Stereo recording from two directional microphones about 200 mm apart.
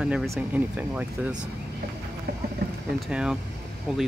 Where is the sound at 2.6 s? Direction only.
50° right (ahead or behind).